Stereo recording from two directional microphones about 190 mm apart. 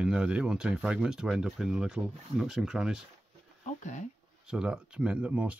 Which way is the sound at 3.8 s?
40° left (ahead or behind).